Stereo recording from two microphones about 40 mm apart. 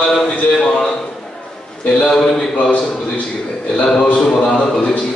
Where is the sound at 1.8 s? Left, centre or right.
Centre.